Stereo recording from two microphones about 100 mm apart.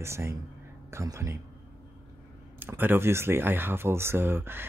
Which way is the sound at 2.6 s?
20° right (ahead or behind).